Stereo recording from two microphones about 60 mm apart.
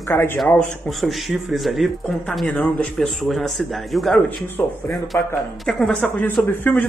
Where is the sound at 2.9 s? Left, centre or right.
Centre.